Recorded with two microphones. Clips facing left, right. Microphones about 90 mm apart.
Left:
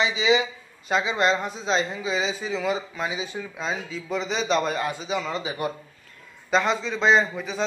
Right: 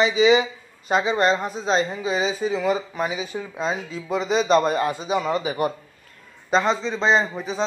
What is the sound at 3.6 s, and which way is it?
Speech, centre (ahead or behind).